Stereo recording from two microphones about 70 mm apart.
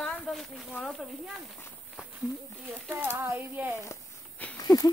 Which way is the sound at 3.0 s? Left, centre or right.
Right.